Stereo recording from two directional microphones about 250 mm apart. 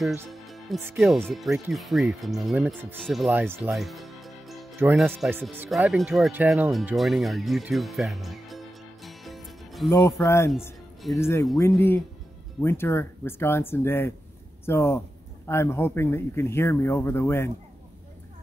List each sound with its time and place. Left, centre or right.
0.3 s speech: centre
10.6 s music: centre
11.1 s a man's voice: centre